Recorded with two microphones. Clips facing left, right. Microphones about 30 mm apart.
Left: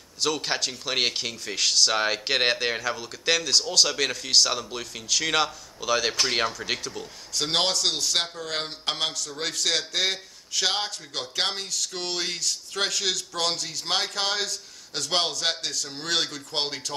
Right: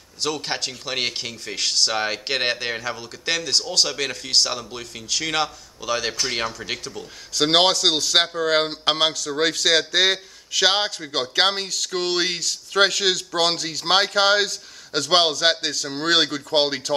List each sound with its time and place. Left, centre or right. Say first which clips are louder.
0.2 s speech: even; centre
2.8 s speech: even; centre
6.2 s speech: even; centre
7.3 s a man's voice: right 7 dB; right
9.3 s a man's voice: right 9 dB; right